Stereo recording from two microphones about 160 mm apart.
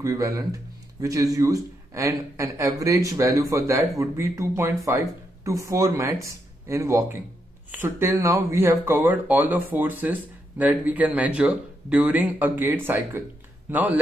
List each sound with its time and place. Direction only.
0.0 s a man's voice: 20° right (ahead or behind)